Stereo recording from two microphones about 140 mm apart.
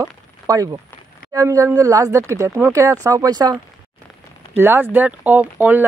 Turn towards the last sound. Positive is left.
turn(degrees=-15)  # may be behind; listen again after turning